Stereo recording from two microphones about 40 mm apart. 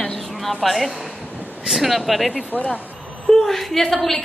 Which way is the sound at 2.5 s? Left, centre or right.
Left.